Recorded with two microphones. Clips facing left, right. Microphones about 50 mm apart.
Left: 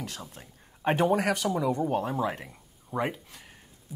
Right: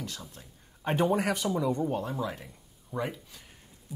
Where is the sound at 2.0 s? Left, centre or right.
Left.